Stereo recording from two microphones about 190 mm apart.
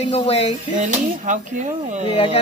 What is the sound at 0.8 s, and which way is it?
Speech, 40° right (ahead or behind).